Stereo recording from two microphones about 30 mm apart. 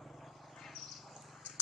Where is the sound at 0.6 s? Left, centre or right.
Centre.